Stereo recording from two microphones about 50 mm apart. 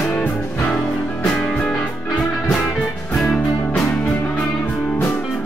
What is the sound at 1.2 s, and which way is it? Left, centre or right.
Music, left.